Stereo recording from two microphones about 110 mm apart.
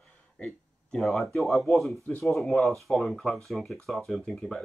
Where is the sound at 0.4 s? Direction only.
5° left (ahead or behind).